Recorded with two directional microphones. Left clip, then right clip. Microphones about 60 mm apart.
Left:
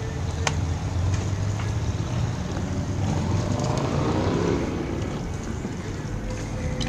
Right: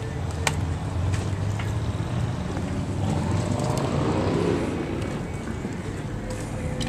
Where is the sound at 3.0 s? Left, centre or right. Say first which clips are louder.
Right 1 dB; left.